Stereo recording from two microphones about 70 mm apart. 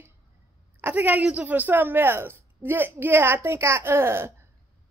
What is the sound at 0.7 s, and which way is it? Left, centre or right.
A woman's voice, right.